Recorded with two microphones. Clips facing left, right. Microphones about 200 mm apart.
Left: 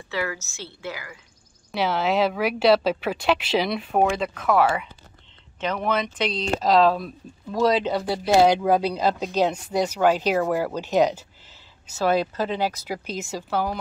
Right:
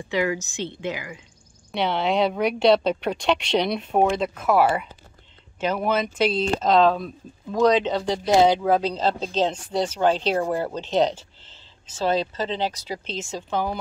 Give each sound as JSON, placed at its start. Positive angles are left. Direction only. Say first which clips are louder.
{"t": 0.1, "sound": "a woman's voice", "louder": "right 5 dB", "side_deg": -15}
{"t": 1.7, "sound": "a woman's voice", "louder": "even", "side_deg": 0}